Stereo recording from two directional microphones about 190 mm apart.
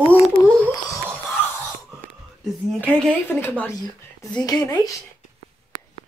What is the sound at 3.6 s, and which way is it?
Speech, 15° left (ahead or behind).